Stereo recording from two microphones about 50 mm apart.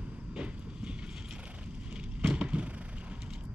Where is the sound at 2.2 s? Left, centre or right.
Right.